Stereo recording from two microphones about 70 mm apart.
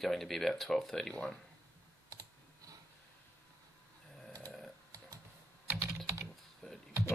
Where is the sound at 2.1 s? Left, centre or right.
Right.